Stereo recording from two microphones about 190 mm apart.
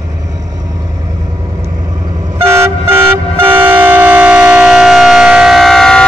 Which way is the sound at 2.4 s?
15° right (ahead or behind).